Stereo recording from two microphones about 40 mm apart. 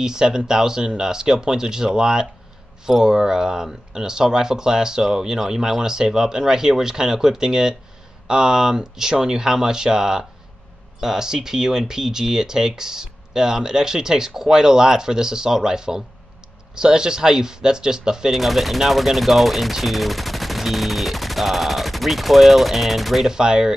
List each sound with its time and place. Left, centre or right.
0.0 s speech: centre
18.3 s speech: centre
23.2 s speech: centre